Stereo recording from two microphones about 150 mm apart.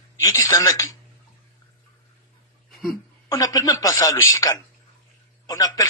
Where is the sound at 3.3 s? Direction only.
25° left (ahead or behind).